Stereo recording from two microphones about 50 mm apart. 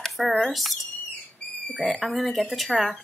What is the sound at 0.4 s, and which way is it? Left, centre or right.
Speech, centre.